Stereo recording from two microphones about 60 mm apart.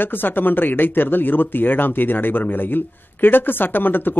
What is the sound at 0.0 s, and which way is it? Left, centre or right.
Speech, left.